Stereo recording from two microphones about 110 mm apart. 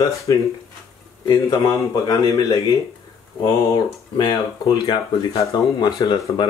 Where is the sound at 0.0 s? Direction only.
30° left (ahead or behind).